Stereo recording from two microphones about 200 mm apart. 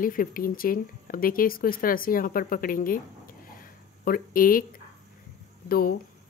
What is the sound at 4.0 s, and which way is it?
Speech, 45° left (ahead or behind).